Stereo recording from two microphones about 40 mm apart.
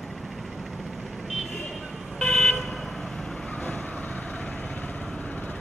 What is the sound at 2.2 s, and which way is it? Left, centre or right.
Vehicle, centre.